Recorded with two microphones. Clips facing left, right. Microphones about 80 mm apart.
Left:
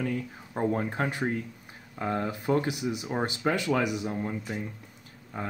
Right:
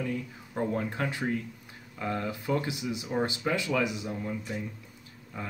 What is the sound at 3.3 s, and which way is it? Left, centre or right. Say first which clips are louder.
Speech: left 3 dB; left.